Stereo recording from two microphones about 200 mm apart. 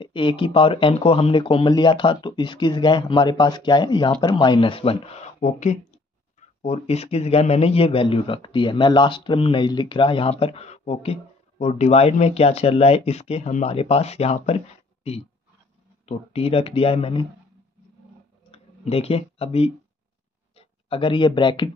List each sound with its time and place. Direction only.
0.0 s a man's voice: 25° left (ahead or behind)
18.5 s speech: 30° left (ahead or behind)